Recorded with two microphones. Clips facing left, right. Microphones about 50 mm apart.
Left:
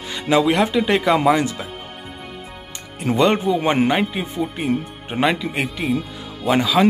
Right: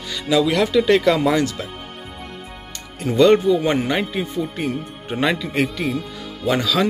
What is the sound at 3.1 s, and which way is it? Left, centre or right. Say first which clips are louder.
Speech: right 4 dB; centre.